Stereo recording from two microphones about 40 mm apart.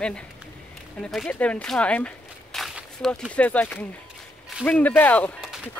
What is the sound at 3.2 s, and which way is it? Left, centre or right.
Speech, left.